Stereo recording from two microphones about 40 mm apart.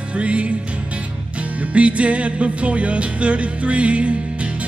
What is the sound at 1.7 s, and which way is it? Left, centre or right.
Music, right.